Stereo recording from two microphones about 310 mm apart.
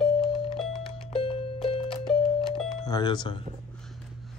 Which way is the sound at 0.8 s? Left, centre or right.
Centre.